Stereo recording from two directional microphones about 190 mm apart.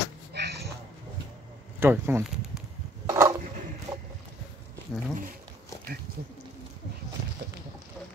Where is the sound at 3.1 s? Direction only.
20° right (ahead or behind).